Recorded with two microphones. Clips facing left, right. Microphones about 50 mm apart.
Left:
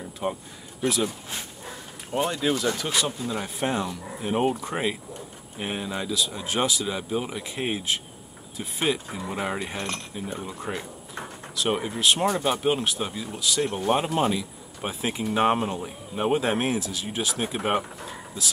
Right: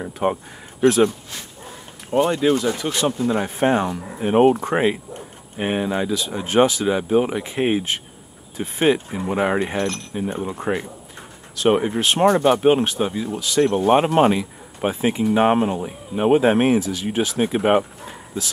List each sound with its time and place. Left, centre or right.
0.0 s speech: right
2.0 s speech: right
5.6 s speech: right
12.0 s speech: right
12.4 s speech: right
15.3 s speech: centre; by 18.5 s right